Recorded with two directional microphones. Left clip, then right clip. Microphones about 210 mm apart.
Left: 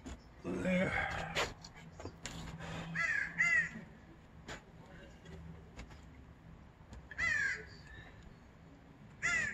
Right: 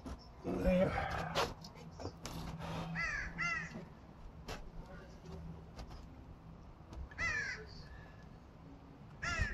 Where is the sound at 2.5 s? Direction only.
35° right (ahead or behind).